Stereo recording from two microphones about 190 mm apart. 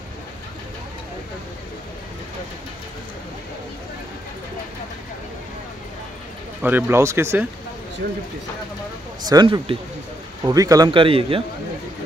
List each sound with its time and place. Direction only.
6.6 s speech: 10° right (ahead or behind)
9.2 s speech: 20° right (ahead or behind)